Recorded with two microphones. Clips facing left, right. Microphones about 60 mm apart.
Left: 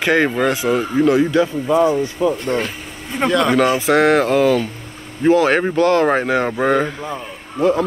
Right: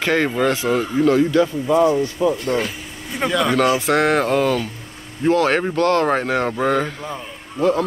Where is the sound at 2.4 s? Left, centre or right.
Left.